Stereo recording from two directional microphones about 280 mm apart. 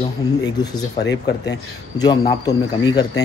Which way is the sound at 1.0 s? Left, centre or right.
Left.